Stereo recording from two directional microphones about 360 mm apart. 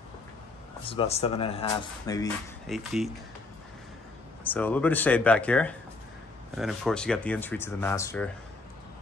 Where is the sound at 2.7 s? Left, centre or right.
Centre.